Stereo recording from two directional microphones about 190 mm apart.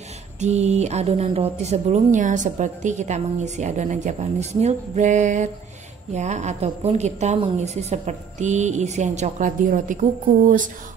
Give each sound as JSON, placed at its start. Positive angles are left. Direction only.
{"t": 0.4, "sound": "a woman's voice", "side_deg": -35}